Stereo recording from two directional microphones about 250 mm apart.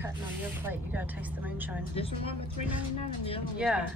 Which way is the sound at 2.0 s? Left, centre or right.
Left.